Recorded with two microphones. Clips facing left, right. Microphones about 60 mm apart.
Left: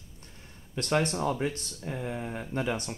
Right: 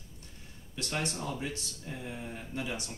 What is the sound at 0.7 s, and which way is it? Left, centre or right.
Speech, left.